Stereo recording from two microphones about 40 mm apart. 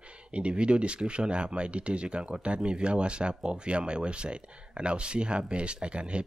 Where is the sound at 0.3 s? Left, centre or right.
Right.